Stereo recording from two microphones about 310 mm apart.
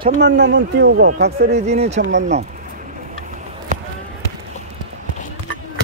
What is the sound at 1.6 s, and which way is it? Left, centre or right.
Speech, right.